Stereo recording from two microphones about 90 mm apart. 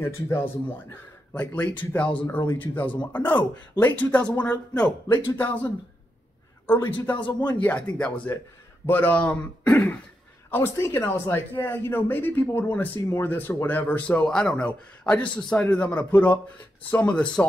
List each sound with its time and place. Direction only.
0.0 s speech: 25° left (ahead or behind)
1.3 s a man's voice: 15° left (ahead or behind)
6.7 s speech: 20° left (ahead or behind)
7.2 s speech: 60° left (ahead or behind)
7.5 s a man's voice: 15° left (ahead or behind)
10.5 s a man's voice: 25° left (ahead or behind)